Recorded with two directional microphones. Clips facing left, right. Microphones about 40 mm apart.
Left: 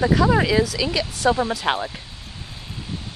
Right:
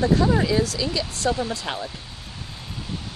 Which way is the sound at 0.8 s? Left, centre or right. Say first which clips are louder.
Left 4 dB; left.